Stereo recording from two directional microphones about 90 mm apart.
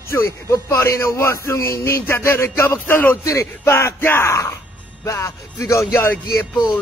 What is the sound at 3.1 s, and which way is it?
Speech, 35° left (ahead or behind).